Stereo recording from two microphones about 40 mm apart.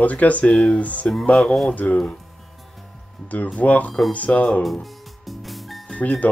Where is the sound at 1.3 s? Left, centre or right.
Centre.